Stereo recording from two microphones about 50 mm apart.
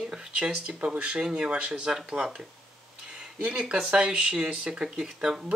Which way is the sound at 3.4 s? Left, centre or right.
Right.